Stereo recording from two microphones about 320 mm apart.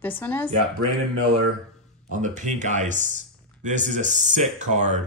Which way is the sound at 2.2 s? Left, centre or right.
Right.